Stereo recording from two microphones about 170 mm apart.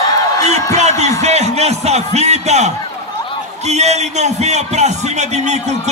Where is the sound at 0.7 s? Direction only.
40° right (ahead or behind).